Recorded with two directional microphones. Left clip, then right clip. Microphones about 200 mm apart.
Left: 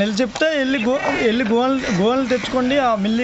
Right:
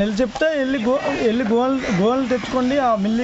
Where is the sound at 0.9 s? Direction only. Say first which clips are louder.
Left 1 dB; 20° left (ahead or behind).